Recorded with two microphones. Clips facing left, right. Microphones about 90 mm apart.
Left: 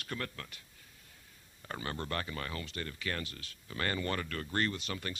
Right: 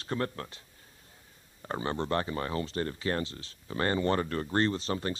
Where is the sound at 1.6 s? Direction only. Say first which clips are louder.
Right 7 dB; 30° right (ahead or behind).